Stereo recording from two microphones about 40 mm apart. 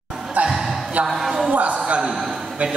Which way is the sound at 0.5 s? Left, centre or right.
Centre.